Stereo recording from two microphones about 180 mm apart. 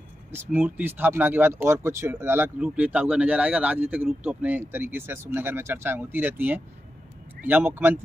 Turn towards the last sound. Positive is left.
turn(degrees=-10)  # may be behind; listen again after turning